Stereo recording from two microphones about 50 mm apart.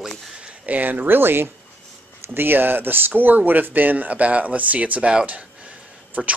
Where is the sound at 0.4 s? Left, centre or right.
Right.